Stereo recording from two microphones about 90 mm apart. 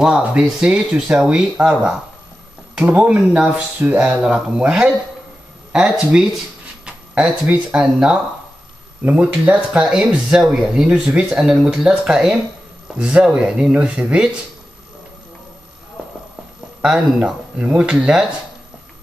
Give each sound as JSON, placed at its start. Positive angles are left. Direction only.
{"t": 0.0, "sound": "speech", "side_deg": -10}
{"t": 16.8, "sound": "speech", "side_deg": -10}